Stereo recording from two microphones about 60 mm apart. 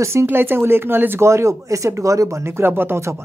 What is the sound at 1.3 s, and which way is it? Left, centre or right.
Speech, right.